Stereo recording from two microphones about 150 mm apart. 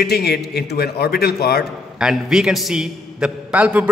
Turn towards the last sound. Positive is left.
turn(degrees=-10)  # may be behind; listen again after turning